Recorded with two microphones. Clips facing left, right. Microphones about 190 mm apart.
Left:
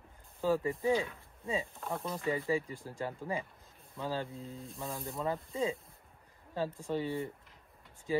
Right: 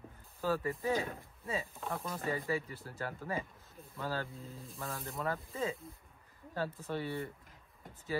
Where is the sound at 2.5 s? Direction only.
15° left (ahead or behind).